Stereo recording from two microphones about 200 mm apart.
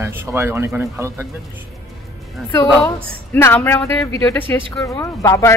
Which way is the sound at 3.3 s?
10° left (ahead or behind).